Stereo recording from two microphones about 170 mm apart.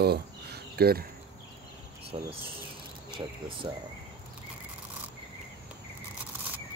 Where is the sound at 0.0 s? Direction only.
70° right (ahead or behind).